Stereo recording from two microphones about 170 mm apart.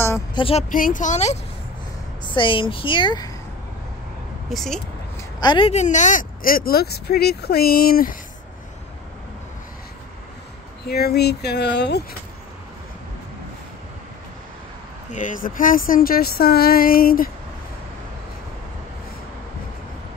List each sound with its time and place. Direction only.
0.3 s speech: 30° left (ahead or behind)
0.7 s a woman's voice: 50° left (ahead or behind)
2.2 s a woman's voice: 30° left (ahead or behind)
4.5 s speech: centre (ahead or behind)
5.4 s a woman's voice: 25° left (ahead or behind)
5.7 s speech: 45° left (ahead or behind)
10.9 s speech: 70° left (ahead or behind)
15.0 s speech: 50° left (ahead or behind)